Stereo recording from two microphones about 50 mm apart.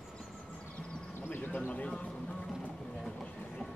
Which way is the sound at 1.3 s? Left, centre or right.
Left.